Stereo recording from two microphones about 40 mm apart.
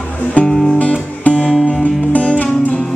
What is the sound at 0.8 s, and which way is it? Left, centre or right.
Music, left.